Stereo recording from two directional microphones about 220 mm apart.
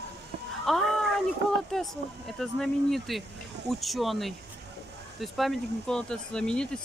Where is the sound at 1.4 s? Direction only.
50° right (ahead or behind).